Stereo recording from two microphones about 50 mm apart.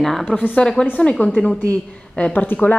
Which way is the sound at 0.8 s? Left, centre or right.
Centre.